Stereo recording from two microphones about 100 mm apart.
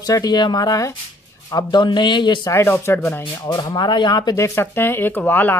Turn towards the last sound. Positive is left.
turn(degrees=20)  # may be behind; listen again after turning